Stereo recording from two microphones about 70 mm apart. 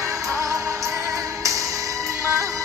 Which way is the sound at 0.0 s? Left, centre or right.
Right.